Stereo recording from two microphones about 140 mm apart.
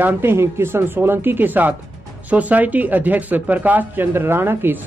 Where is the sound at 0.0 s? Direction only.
15° right (ahead or behind).